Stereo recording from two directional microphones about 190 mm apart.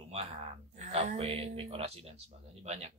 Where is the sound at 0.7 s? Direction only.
35° right (ahead or behind).